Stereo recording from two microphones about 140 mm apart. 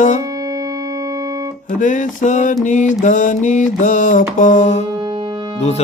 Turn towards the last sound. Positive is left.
turn(degrees=-30)  # may be behind; listen again after turning